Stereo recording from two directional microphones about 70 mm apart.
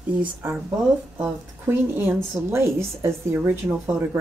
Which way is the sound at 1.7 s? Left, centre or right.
Right.